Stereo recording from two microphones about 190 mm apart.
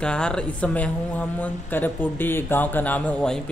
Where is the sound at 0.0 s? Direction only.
5° left (ahead or behind).